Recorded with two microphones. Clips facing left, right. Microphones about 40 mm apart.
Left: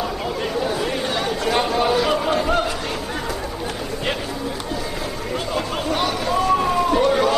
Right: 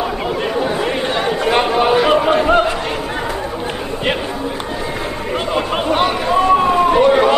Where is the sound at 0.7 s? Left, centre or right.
Right.